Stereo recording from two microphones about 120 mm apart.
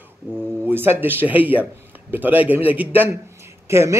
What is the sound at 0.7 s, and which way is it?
A man's voice, 15° right (ahead or behind).